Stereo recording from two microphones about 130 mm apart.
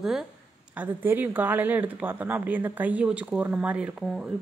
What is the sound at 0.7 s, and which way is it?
A woman's voice, 15° right (ahead or behind).